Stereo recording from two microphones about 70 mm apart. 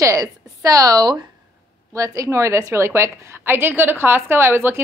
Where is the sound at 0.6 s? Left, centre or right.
Right.